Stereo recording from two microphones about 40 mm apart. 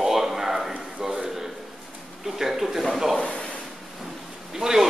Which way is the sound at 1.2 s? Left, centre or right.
Centre.